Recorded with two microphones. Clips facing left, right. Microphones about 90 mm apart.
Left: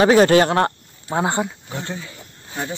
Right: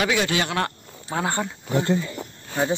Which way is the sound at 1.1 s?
20° left (ahead or behind).